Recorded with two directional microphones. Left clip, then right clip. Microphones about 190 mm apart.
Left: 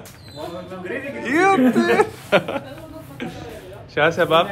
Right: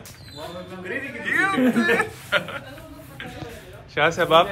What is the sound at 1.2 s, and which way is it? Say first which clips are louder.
Speech: left 5 dB; 25° left (ahead or behind).